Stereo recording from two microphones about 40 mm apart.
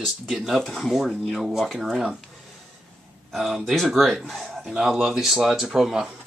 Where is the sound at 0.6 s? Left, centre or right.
Centre.